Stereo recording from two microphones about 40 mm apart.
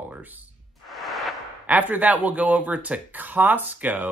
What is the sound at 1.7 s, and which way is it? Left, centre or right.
Speech, right.